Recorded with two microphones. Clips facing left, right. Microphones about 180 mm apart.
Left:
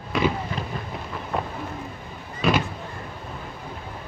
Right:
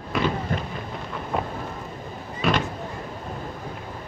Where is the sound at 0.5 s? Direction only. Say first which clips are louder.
Right 3 dB; 50° right (ahead or behind).